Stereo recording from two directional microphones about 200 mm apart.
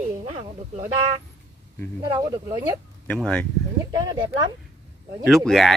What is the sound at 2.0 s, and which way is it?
Speech, 20° right (ahead or behind).